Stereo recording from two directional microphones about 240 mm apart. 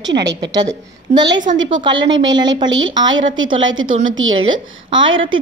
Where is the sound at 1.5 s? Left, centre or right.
Right.